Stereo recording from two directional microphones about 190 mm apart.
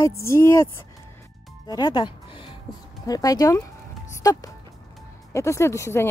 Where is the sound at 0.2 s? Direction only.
15° left (ahead or behind).